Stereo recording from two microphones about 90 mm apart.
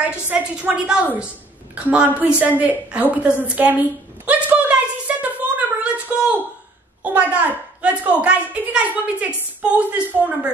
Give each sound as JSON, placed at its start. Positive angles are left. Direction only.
{"t": 0.1, "sound": "a child's voice", "side_deg": -15}
{"t": 4.3, "sound": "a sound", "side_deg": -15}
{"t": 7.0, "sound": "a child's voice", "side_deg": -15}